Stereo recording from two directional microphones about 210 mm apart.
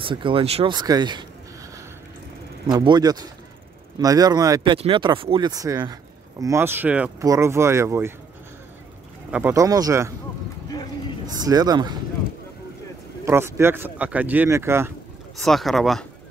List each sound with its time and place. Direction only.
0.0 s speech: 25° right (ahead or behind)
2.6 s speech: 20° right (ahead or behind)
9.3 s speech: 10° right (ahead or behind)
11.3 s speech: 20° right (ahead or behind)
13.2 s speech: 15° right (ahead or behind)
15.4 s speech: centre (ahead or behind)